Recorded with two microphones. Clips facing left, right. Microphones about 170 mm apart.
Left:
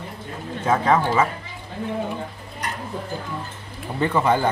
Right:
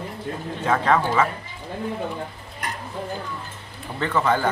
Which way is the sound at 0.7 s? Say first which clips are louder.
Left 1 dB; 5° left (ahead or behind).